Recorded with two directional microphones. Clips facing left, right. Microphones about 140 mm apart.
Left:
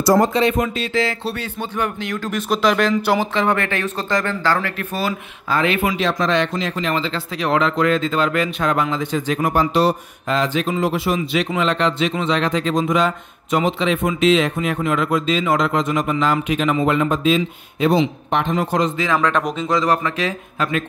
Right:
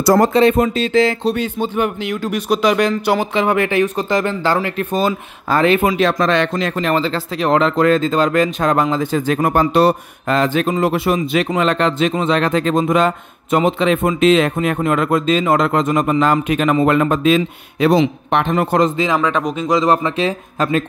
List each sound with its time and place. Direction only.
0.1 s speech: 55° right (ahead or behind)
0.5 s speech: 30° right (ahead or behind)
5.5 s speech: 40° right (ahead or behind)
5.9 s speech: 55° right (ahead or behind)
19.1 s speech: 5° right (ahead or behind)
19.7 s speech: 25° right (ahead or behind)